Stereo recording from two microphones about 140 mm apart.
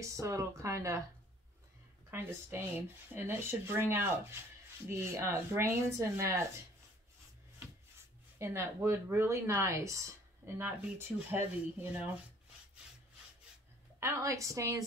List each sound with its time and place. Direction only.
0.0 s speech: 20° right (ahead or behind)
2.0 s speech: 15° right (ahead or behind)
8.4 s speech: 15° right (ahead or behind)
13.9 s speech: 20° right (ahead or behind)